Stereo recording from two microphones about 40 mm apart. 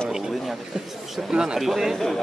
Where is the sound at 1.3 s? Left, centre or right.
Centre.